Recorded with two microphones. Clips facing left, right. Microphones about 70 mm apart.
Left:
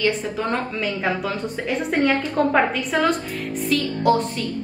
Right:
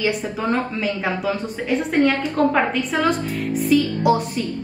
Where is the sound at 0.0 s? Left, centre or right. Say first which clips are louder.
Even; centre.